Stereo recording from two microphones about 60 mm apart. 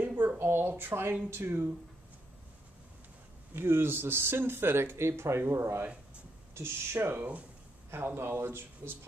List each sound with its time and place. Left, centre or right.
0.0 s a sound: right
1.3 s speech: right
3.5 s speech: right